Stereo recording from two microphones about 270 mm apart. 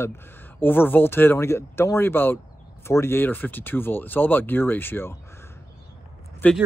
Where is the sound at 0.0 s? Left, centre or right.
Centre.